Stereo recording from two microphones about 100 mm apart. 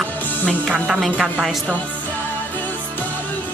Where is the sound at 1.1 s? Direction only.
10° right (ahead or behind).